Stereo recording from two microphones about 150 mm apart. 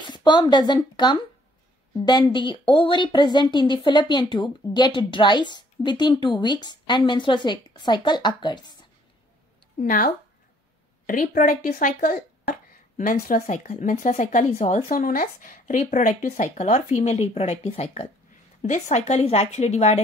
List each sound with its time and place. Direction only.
0.0 s speech: 30° left (ahead or behind)
9.8 s speech: 65° left (ahead or behind)
14.9 s a woman's voice: 70° left (ahead or behind); by 20.0 s 50° left (ahead or behind)